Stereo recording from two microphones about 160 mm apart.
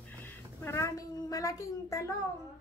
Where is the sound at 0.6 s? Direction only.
15° left (ahead or behind).